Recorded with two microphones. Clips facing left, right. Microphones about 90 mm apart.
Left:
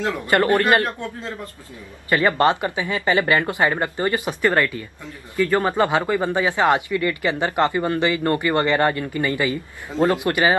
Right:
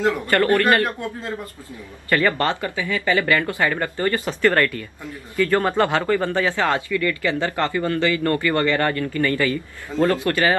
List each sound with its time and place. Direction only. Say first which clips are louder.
0.3 s speech: left 2 dB; 20° left (ahead or behind)
2.0 s speech: left 2 dB; 20° left (ahead or behind)